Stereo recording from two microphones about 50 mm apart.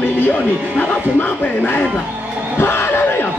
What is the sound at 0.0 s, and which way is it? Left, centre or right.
Music, left.